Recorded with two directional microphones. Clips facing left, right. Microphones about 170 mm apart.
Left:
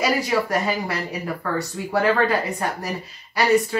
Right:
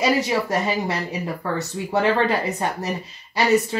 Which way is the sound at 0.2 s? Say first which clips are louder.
Even; 25° right (ahead or behind).